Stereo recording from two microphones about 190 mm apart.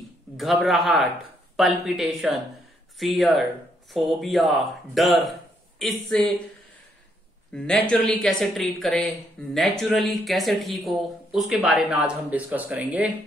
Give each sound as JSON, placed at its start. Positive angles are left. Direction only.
{"t": 0.4, "sound": "speech", "side_deg": 0}
{"t": 7.5, "sound": "speech", "side_deg": 5}